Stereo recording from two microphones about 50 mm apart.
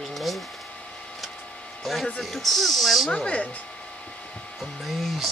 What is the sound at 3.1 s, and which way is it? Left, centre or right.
Speech, left.